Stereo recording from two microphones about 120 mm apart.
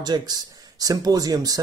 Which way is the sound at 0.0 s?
35° right (ahead or behind).